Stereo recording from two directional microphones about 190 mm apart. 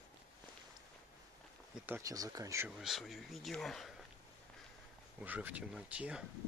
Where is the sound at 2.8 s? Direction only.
Centre (ahead or behind).